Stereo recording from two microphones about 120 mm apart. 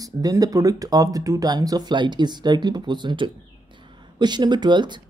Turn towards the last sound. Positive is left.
turn(degrees=-40)  # may be behind; listen again after turning